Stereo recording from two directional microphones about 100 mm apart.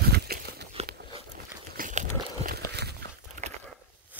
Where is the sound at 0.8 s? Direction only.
90° right.